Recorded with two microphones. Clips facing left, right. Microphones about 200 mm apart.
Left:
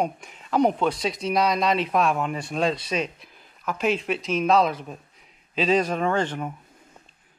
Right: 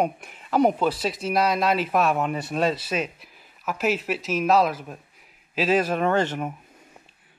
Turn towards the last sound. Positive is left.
turn(degrees=-10)  # may be behind; listen again after turning